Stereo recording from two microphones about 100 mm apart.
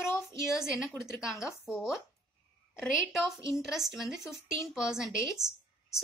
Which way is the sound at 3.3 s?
Centre (ahead or behind).